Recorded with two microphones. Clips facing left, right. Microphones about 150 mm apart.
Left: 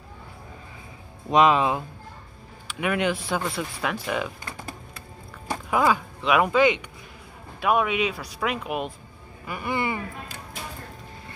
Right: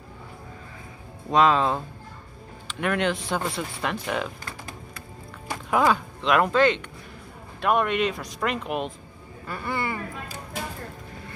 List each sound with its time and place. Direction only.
1.3 s speech: 15° left (ahead or behind); by 4.3 s centre (ahead or behind)
5.7 s speech: 5° left (ahead or behind)
9.5 s speech: 15° left (ahead or behind)